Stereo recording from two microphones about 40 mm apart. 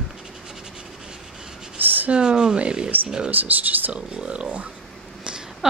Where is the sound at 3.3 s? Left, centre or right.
Right.